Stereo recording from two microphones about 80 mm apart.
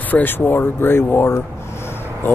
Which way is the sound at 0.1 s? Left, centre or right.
Left.